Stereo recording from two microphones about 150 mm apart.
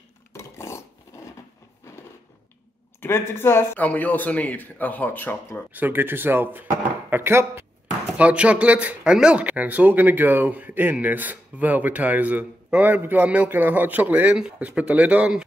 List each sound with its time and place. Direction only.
0.3 s a sound: 20° left (ahead or behind)
3.0 s speech: 15° left (ahead or behind)
5.7 s speech: 10° right (ahead or behind)